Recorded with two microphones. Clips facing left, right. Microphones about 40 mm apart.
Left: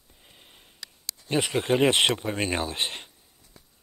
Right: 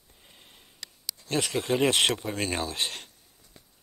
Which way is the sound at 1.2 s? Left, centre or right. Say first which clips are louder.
Left 3 dB; left.